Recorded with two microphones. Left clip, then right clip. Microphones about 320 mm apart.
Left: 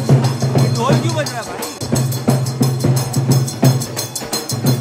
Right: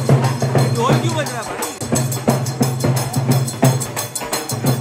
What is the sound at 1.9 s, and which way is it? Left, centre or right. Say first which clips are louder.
Music: right 1 dB; right.